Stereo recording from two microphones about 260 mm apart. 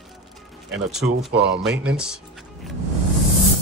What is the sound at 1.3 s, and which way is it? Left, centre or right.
Speech, right.